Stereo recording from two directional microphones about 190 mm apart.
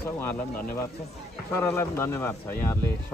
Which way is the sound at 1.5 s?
15° left (ahead or behind).